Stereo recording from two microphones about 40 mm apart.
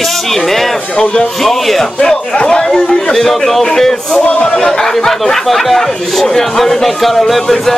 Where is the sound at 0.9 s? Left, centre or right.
Left.